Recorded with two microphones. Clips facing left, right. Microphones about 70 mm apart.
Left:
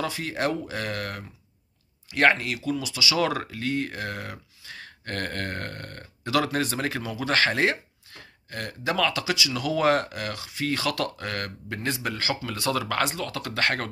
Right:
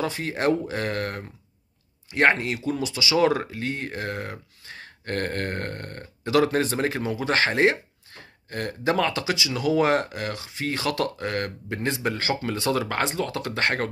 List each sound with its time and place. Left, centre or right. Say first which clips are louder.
0.0 s speech: right 3 dB; right